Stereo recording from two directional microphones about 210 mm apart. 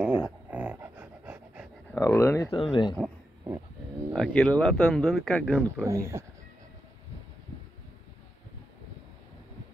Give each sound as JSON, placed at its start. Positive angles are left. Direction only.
{"t": 0.0, "sound": "dog", "side_deg": -5}
{"t": 1.9, "sound": "speech", "side_deg": 10}
{"t": 2.5, "sound": "speech", "side_deg": 25}
{"t": 4.1, "sound": "speech", "side_deg": 0}
{"t": 5.9, "sound": "speech", "side_deg": -15}